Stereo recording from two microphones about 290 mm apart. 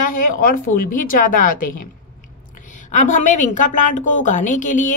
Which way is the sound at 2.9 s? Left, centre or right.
Left.